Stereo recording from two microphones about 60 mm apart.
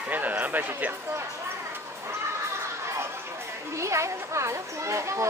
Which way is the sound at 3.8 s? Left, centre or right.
Right.